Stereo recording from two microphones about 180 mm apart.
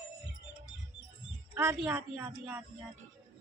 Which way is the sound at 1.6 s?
10° right (ahead or behind).